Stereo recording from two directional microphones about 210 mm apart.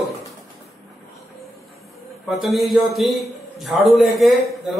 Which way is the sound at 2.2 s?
Centre (ahead or behind).